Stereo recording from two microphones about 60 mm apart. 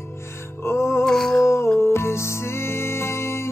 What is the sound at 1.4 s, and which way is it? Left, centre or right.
Music, left.